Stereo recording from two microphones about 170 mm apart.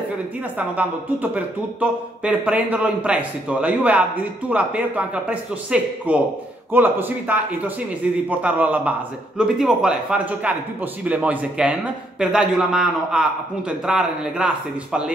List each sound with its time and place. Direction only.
0.6 s a man's voice: 10° right (ahead or behind)